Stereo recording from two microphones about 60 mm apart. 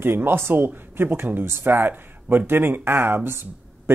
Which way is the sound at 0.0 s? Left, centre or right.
Right.